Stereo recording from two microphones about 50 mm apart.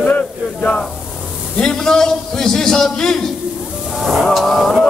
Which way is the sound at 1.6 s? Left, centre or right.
Centre.